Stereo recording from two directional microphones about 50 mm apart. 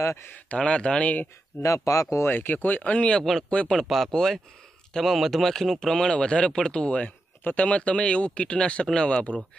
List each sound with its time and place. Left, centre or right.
0.0 s speech: left
0.3 s speech: left
1.6 s speech: left
2.2 s speech: left
3.2 s speech: centre
3.4 s speech: centre
3.8 s speech: centre